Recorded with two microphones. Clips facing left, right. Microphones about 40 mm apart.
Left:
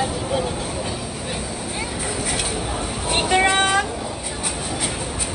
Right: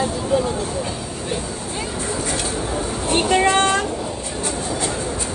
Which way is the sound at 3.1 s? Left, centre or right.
Centre.